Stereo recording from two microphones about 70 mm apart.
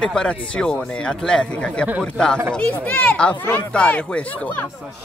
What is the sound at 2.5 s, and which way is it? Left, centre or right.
Speech, left.